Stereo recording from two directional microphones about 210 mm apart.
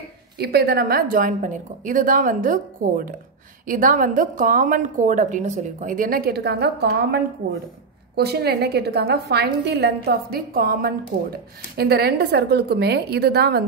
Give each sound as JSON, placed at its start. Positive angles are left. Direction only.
{"t": 0.4, "sound": "a woman's voice", "side_deg": -50}
{"t": 8.2, "sound": "a woman's voice", "side_deg": -50}